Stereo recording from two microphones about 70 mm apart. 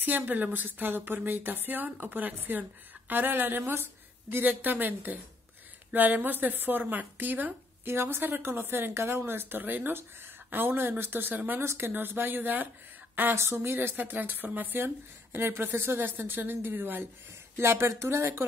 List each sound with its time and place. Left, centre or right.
0.0 s speech: right
11.6 s speech: right